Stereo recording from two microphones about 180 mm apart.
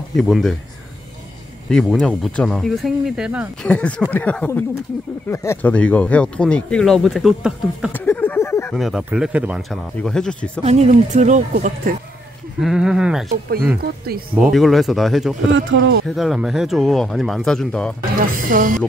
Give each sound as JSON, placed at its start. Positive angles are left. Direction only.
{"t": 0.1, "sound": "speech", "side_deg": 0}
{"t": 1.7, "sound": "speech", "side_deg": 5}
{"t": 3.6, "sound": "speech", "side_deg": 5}
{"t": 7.9, "sound": "a sound", "side_deg": 10}
{"t": 8.7, "sound": "speech", "side_deg": 0}
{"t": 10.6, "sound": "a woman's voice", "side_deg": -40}
{"t": 12.5, "sound": "speech", "side_deg": -5}
{"t": 14.3, "sound": "speech", "side_deg": 0}
{"t": 15.5, "sound": "speech", "side_deg": -90}
{"t": 16.1, "sound": "speech", "side_deg": 0}
{"t": 18.2, "sound": "speech", "side_deg": -50}